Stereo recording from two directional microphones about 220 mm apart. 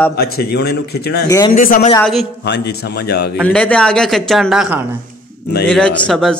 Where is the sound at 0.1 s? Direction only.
45° left (ahead or behind).